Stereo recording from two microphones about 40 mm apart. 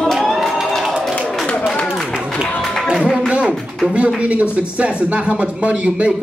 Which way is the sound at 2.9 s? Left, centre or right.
Centre.